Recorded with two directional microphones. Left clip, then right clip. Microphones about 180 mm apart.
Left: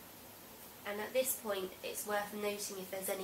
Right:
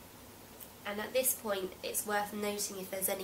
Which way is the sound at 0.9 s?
30° right (ahead or behind).